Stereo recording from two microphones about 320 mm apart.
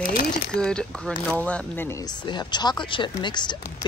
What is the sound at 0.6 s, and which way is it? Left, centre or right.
Speech, centre.